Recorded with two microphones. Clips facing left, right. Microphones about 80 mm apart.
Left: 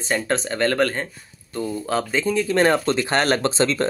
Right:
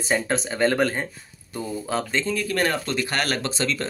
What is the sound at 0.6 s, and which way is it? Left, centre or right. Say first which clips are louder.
Speech: left 1 dB; centre.